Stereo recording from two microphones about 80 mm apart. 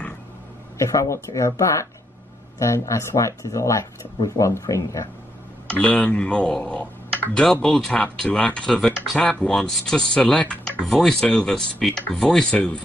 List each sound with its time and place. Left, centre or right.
0.7 s speech: left
5.7 s speech: centre